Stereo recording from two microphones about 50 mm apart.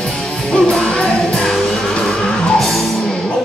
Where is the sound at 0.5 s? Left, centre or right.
Centre.